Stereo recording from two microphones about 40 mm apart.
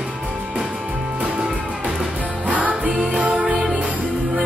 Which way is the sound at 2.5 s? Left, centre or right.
Right.